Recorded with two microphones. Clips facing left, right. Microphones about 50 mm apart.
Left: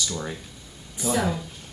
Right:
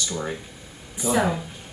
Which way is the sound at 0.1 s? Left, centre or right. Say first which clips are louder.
Right 3 dB; centre.